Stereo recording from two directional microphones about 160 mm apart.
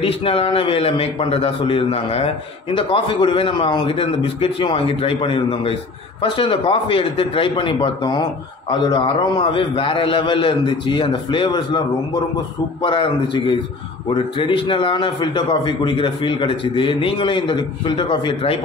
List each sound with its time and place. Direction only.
0.0 s a man's voice: 35° left (ahead or behind)
12.8 s a man's voice: 30° left (ahead or behind)